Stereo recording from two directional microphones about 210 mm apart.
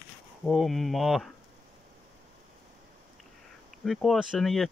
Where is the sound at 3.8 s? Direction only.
Centre (ahead or behind).